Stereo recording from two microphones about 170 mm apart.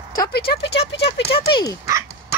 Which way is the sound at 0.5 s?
90° left.